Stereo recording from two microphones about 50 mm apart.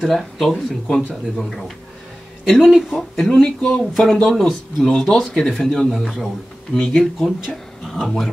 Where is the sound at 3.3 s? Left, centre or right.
Centre.